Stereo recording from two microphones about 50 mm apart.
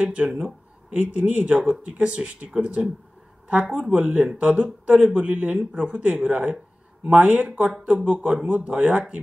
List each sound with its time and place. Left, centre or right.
0.0 s speech: centre
1.1 s speech: right